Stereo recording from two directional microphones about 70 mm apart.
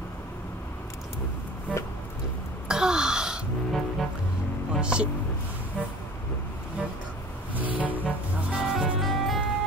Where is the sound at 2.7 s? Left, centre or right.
Centre.